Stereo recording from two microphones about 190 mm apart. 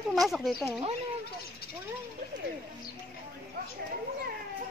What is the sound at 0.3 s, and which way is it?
Speech, centre (ahead or behind).